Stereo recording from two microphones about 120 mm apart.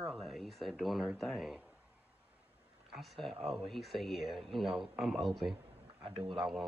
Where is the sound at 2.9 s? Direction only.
Centre (ahead or behind).